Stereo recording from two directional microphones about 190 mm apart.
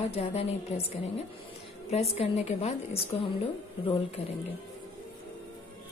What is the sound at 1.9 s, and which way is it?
A woman's voice, 35° left (ahead or behind).